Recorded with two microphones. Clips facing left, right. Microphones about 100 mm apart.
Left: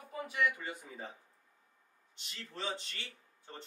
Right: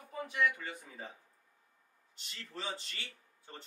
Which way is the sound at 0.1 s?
10° left (ahead or behind).